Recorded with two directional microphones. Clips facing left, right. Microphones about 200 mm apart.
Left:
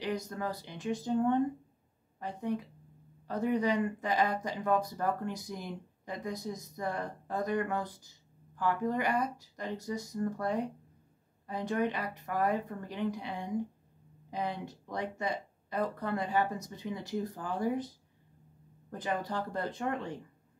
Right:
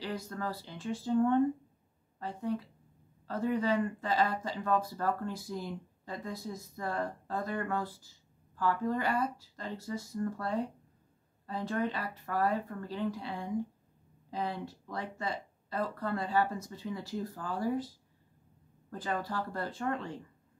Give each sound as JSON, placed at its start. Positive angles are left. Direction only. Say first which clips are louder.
{"t": 0.0, "sound": "speech", "louder": "left 2 dB", "side_deg": 15}
{"t": 18.9, "sound": "speech", "louder": "left 1 dB", "side_deg": 20}